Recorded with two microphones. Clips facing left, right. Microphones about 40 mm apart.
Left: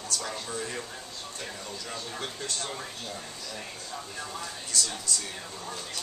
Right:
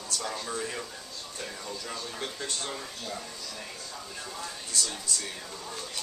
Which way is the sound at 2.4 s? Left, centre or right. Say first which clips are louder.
Even; centre.